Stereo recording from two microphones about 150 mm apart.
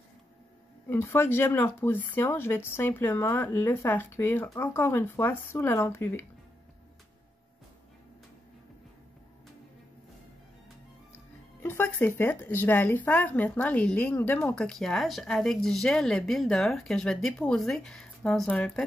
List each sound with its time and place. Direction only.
0.8 s speech: 15° left (ahead or behind)
11.6 s speech: 15° left (ahead or behind)